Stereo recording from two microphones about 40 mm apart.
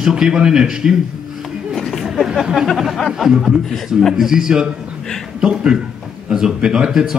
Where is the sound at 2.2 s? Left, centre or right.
Centre.